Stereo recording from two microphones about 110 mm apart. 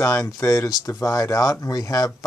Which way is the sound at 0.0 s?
30° left (ahead or behind).